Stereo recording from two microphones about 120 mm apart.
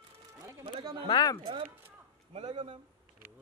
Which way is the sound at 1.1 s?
40° left (ahead or behind).